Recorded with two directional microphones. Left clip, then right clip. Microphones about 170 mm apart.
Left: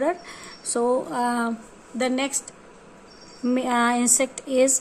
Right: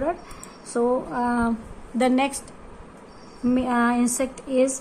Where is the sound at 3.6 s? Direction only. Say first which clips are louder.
Left 1 dB; 20° left (ahead or behind).